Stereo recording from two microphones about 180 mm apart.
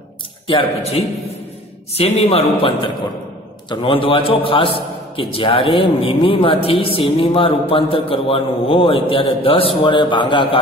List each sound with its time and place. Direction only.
0.5 s a man's voice: 30° left (ahead or behind)
2.0 s a man's voice: 35° left (ahead or behind)